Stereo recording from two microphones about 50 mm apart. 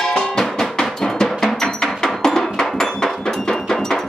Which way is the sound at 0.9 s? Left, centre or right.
Centre.